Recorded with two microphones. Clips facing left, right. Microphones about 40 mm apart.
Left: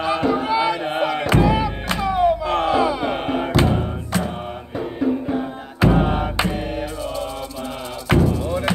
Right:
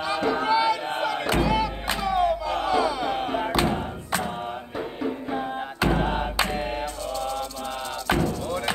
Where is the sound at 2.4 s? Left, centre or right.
Left.